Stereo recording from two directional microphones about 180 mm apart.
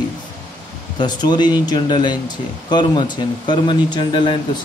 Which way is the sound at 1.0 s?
25° left (ahead or behind).